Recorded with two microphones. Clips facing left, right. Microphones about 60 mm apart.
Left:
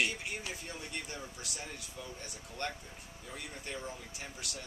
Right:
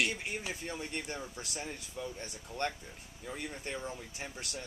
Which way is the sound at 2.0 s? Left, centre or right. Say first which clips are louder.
Right 7 dB; centre.